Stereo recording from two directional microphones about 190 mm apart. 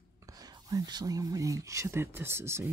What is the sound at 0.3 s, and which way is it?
Speech, 20° right (ahead or behind).